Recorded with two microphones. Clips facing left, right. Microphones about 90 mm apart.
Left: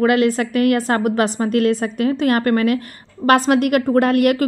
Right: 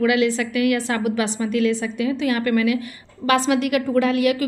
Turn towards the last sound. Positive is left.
turn(degrees=55)  # may be behind; listen again after turning